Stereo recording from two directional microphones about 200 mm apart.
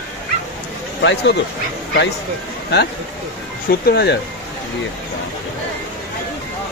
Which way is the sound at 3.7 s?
50° left (ahead or behind).